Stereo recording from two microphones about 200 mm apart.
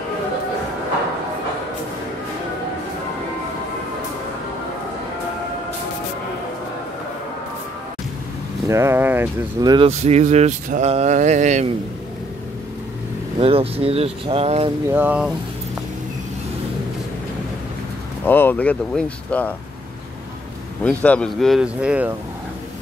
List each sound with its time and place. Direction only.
8.6 s speech: 15° right (ahead or behind)
9.8 s mantra: 35° right (ahead or behind)
13.4 s speech: 30° right (ahead or behind)
14.9 s speech: 10° right (ahead or behind)
18.2 s speech: 10° left (ahead or behind)
20.8 s speech: 5° left (ahead or behind)